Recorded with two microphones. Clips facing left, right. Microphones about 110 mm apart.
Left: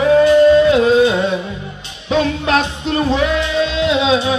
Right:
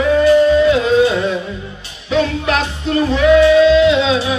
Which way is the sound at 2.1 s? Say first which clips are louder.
Left 1 dB; 25° left (ahead or behind).